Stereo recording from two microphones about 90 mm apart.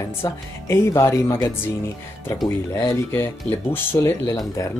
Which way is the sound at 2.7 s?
45° left (ahead or behind).